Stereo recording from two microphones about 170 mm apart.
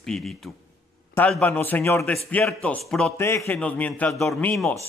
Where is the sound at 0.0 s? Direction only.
5° left (ahead or behind).